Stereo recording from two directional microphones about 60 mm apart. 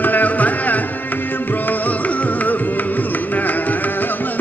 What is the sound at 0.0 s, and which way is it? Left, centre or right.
Music, left.